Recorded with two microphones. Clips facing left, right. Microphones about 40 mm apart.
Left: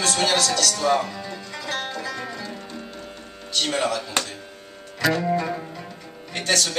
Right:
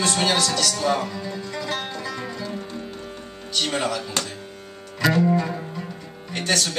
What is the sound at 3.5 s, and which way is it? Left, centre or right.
Speech, centre.